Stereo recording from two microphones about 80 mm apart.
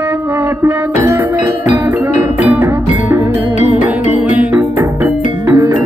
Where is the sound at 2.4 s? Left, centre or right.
Right.